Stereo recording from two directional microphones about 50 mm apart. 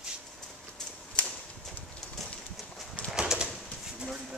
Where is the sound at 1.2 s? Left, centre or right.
Left.